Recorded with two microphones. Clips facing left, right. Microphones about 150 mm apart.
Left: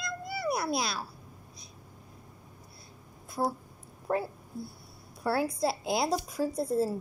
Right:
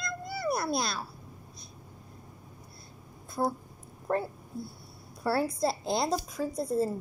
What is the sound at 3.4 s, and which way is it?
A woman's voice, 5° left (ahead or behind).